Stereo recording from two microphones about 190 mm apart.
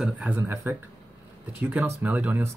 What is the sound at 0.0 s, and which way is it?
Speech, 5° right (ahead or behind).